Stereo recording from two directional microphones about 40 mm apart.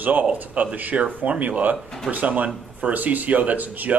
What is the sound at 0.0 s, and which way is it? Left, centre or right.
Speech, right.